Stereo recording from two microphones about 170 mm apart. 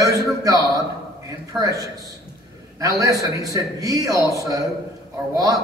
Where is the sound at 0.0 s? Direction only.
20° right (ahead or behind).